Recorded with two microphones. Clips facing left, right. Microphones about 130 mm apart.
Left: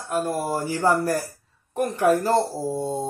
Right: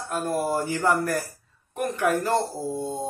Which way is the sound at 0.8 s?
35° left (ahead or behind).